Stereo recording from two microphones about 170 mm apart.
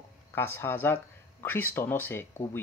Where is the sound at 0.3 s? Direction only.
15° left (ahead or behind).